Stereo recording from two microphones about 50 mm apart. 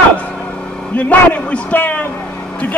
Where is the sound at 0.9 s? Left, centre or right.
Left.